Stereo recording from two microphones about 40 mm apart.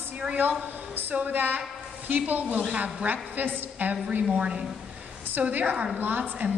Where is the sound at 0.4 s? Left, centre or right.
Right.